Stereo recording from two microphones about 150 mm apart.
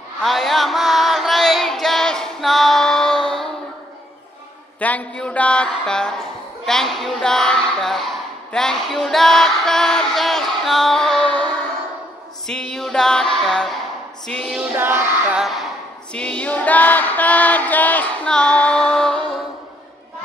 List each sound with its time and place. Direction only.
0.2 s music: centre (ahead or behind)
4.7 s female singing: 10° left (ahead or behind)
6.6 s a woman's voice: centre (ahead or behind)
12.4 s music: 5° left (ahead or behind)
14.6 s child singing: 15° right (ahead or behind)
16.1 s female singing: 5° left (ahead or behind)